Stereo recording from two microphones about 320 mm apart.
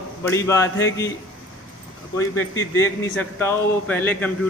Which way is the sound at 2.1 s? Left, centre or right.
Centre.